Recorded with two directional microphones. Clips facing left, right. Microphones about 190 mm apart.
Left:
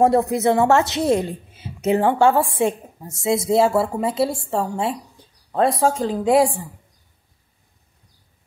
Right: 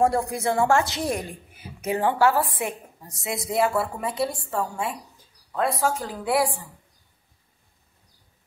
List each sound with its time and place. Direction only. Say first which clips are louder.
0.0 s a woman's voice: left 6 dB; 20° left (ahead or behind)